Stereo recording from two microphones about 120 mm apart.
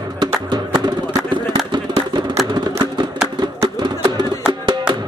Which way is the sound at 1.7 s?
40° right (ahead or behind).